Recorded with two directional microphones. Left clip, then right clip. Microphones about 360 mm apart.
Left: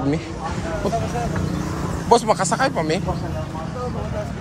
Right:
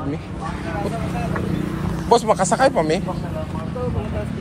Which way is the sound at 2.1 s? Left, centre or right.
Centre.